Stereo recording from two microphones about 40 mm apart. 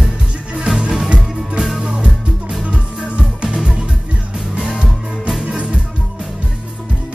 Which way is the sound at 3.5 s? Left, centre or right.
Centre.